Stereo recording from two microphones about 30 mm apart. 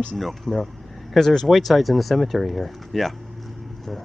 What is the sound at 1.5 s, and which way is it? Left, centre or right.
Speech, centre.